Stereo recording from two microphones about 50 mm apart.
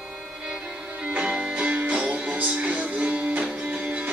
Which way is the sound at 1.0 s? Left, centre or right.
Centre.